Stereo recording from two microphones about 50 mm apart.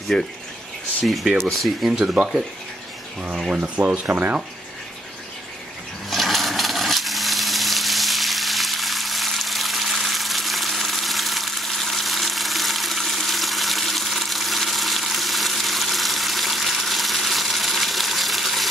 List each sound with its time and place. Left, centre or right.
0.1 s speech: centre
1.0 s speech: centre
1.9 s speech: centre
3.4 s speech: right
6.0 s a sound: centre